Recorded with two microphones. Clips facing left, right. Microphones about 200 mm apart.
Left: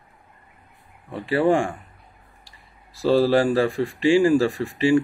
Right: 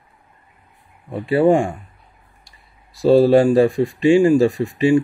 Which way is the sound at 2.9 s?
20° right (ahead or behind).